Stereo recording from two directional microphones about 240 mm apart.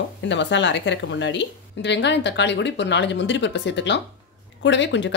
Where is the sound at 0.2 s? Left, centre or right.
Left.